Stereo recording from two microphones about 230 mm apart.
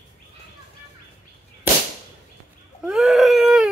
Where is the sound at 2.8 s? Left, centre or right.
Centre.